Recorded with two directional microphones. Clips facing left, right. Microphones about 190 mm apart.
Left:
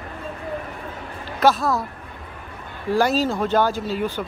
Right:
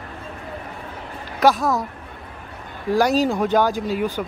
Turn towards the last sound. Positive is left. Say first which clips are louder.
# right 2 dB
turn(degrees=-10)  # may be behind; listen again after turning